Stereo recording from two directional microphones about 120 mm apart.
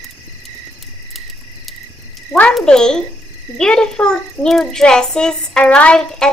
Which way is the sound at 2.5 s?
5° left (ahead or behind).